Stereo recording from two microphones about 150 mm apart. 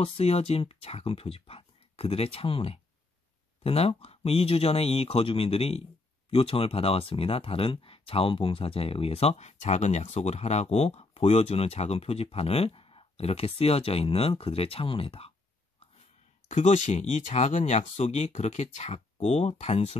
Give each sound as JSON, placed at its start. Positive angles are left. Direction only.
{"t": 0.0, "sound": "speech", "side_deg": 40}
{"t": 16.4, "sound": "speech", "side_deg": 55}